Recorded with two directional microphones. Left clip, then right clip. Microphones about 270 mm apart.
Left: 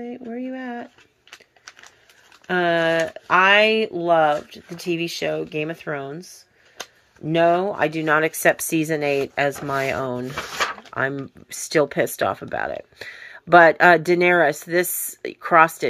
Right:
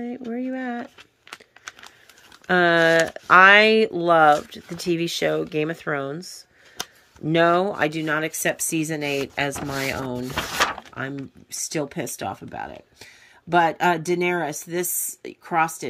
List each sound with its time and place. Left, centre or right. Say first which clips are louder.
0.0 s speech: right 1 dB; centre
2.4 s speech: right 2 dB; centre
7.2 s speech: left 1 dB; centre
10.3 s a sound: right 2 dB; right
10.9 s a sound: left 8 dB; centre
11.4 s speech: left 8 dB; centre